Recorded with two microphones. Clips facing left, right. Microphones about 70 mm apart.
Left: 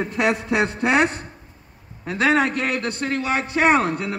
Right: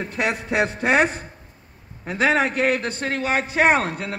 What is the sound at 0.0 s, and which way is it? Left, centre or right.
Speech, centre.